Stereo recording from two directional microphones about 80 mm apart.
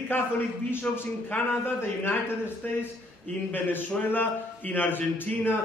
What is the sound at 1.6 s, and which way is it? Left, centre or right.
A man's voice, left.